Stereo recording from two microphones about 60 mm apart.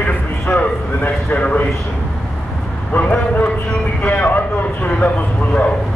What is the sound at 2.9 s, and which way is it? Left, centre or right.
A man's voice, left.